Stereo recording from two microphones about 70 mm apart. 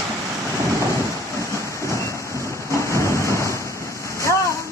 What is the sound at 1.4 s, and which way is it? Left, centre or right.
Rain, left.